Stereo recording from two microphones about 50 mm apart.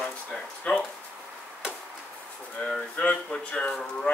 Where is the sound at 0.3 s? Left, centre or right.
Centre.